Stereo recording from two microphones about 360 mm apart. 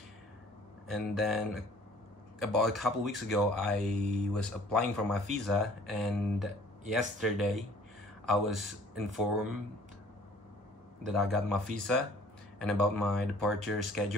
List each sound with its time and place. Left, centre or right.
0.8 s speech: centre
11.1 s speech: centre